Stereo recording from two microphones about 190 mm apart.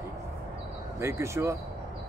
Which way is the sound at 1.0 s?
15° right (ahead or behind).